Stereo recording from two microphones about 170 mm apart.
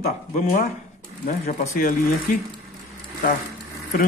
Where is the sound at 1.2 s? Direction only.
50° left (ahead or behind).